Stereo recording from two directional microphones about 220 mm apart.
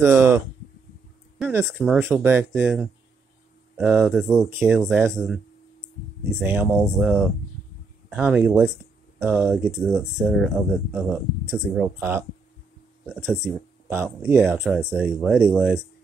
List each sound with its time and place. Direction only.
0.0 s speech: 10° right (ahead or behind)
1.4 s speech: 5° right (ahead or behind)
6.4 s speech: 5° right (ahead or behind)
11.5 s speech: centre (ahead or behind)